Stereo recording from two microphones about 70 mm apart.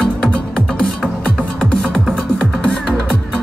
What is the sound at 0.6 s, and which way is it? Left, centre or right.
Music, centre.